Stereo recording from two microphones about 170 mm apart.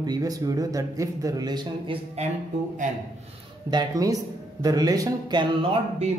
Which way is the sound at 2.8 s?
50° right (ahead or behind).